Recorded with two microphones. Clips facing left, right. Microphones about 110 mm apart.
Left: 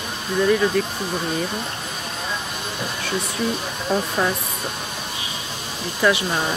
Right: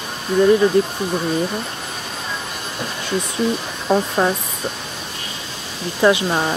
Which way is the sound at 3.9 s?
40° right (ahead or behind).